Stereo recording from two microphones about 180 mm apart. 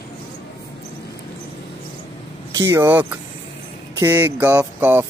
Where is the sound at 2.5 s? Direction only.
15° right (ahead or behind).